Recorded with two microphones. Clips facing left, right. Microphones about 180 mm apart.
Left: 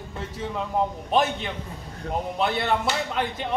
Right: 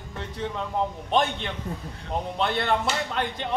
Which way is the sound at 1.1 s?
5° left (ahead or behind).